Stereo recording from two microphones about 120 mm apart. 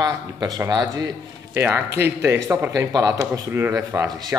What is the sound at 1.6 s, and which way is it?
Speech, 20° right (ahead or behind).